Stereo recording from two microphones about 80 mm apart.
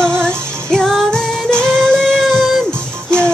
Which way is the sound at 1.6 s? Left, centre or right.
Centre.